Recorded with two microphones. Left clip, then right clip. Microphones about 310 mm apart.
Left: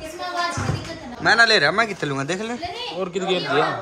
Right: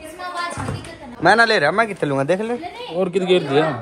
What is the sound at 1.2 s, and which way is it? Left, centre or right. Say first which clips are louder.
A man's voice: right 2 dB; centre.